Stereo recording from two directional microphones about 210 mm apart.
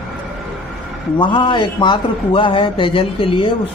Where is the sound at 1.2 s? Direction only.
20° left (ahead or behind).